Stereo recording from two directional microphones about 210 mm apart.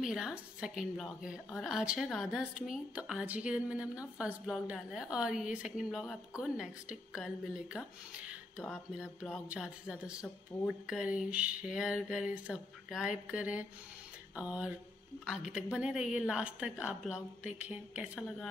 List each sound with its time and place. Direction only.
0.0 s a woman's voice: centre (ahead or behind)
14.3 s a sound: 5° right (ahead or behind)
15.2 s a woman's voice: 5° right (ahead or behind)